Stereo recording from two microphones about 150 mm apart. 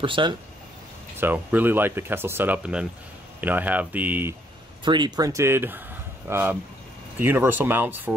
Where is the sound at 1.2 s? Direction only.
10° right (ahead or behind).